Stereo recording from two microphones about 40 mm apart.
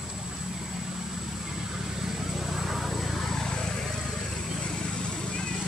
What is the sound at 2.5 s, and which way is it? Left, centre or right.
Vehicle, centre.